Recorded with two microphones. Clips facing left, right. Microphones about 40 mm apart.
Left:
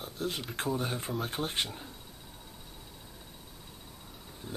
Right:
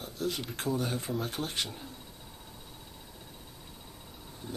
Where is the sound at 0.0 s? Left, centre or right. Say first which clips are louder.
Right 1 dB; left.